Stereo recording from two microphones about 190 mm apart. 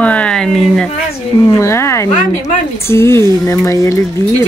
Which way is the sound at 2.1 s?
40° left (ahead or behind).